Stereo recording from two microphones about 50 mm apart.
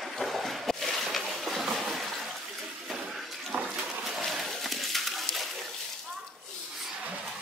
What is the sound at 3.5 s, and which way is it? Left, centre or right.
Water, right.